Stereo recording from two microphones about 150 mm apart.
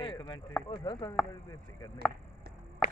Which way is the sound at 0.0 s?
30° left (ahead or behind).